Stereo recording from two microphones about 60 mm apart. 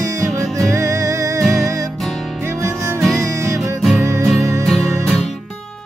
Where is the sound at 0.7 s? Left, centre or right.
Right.